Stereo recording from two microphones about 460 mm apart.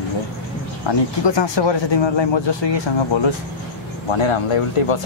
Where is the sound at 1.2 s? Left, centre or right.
Left.